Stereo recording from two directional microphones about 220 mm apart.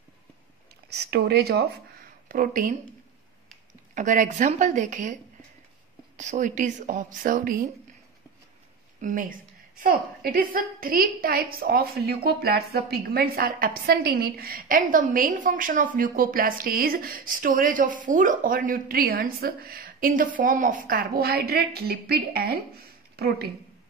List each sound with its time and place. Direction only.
0.9 s speech: 45° right (ahead or behind)
3.9 s a woman's voice: 35° right (ahead or behind)
6.1 s a woman's voice: 35° right (ahead or behind)
9.0 s a woman's voice: 40° right (ahead or behind)